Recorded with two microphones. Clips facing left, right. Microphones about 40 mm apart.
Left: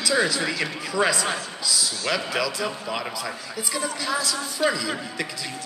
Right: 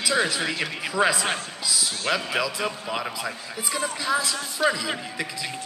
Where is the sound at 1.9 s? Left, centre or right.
Right.